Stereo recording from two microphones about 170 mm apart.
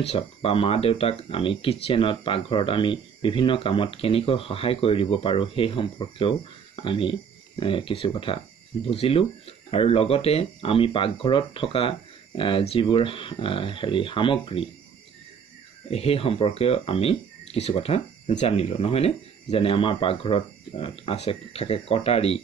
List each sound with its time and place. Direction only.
0.0 s speech: 35° left (ahead or behind)
15.9 s speech: 35° left (ahead or behind)